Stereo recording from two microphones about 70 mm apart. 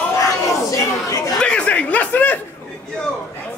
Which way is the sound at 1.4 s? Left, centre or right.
Centre.